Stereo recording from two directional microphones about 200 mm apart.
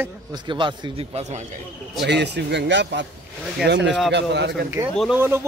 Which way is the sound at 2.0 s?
55° right (ahead or behind).